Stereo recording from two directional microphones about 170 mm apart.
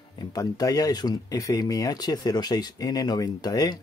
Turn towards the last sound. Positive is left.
turn(degrees=20)  # may be behind; listen again after turning